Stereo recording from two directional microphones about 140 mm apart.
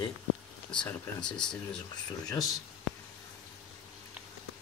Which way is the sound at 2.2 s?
25° left (ahead or behind).